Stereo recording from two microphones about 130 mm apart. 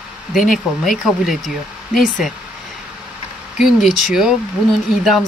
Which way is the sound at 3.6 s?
5° right (ahead or behind).